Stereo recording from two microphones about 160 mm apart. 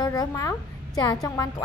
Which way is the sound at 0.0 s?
25° left (ahead or behind).